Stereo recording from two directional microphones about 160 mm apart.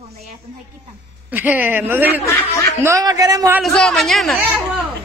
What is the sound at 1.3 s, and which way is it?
Speech, 10° right (ahead or behind).